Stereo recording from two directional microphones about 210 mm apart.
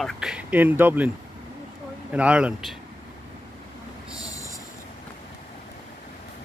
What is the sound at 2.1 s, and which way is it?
Speech, 5° right (ahead or behind).